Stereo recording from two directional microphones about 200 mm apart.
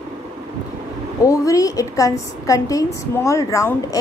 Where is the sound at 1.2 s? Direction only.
15° left (ahead or behind).